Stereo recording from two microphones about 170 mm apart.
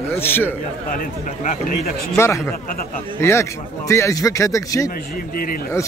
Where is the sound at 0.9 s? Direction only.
55° left (ahead or behind).